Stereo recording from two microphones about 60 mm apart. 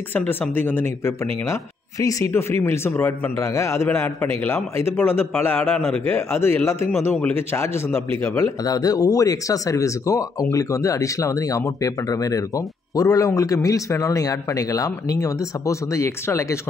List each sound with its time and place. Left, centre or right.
0.1 s a man's voice: left
2.0 s speech: left
2.3 s a man's voice: left
8.6 s speech: left